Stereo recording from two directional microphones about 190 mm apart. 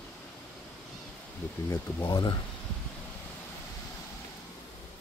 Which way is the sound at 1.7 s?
20° left (ahead or behind).